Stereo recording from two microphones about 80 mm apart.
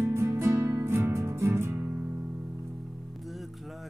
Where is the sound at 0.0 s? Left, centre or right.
Right.